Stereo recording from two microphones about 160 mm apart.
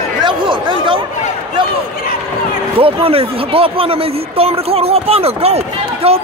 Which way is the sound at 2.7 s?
35° right (ahead or behind).